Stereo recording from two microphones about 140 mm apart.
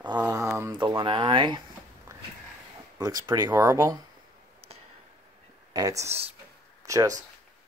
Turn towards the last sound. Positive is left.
turn(degrees=-25)  # may be behind; listen again after turning